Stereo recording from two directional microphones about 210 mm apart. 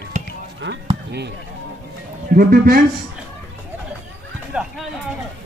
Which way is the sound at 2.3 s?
45° right (ahead or behind).